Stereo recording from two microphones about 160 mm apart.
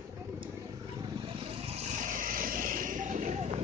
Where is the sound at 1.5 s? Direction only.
40° right (ahead or behind).